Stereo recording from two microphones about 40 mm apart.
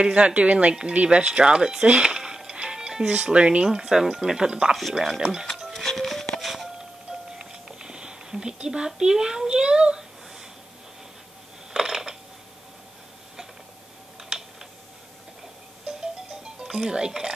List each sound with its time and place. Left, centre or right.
0.0 s speech: right
2.0 s music: centre
3.3 s speech: right
3.6 s speech: centre
4.9 s speech: centre
5.9 s music: centre
7.9 s a sound: centre
8.6 s speech: centre
9.5 s speech: right
11.7 s coin: centre
16.6 s speech: centre